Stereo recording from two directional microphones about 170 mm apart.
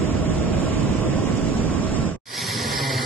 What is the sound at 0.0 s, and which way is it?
Vehicle, 10° left (ahead or behind).